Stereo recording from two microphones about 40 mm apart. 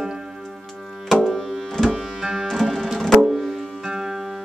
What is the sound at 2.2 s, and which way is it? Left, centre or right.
Music, centre.